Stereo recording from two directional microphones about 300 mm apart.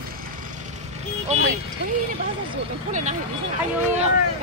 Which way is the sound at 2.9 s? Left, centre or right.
Right.